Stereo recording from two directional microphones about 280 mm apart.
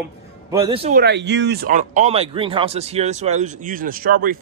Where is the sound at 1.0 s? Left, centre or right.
Right.